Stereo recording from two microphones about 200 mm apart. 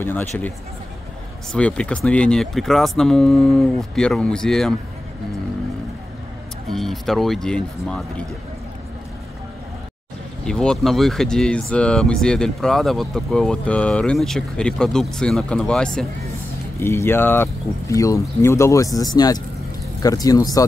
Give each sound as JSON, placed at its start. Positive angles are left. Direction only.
{"t": 0.0, "sound": "speech", "side_deg": 10}
{"t": 1.5, "sound": "speech", "side_deg": 5}
{"t": 6.7, "sound": "speech", "side_deg": 0}
{"t": 10.4, "sound": "speech", "side_deg": 5}